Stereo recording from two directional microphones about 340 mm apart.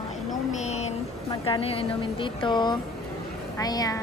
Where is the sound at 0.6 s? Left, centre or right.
Centre.